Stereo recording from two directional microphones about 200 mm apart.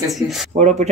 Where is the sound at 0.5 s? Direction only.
35° right (ahead or behind).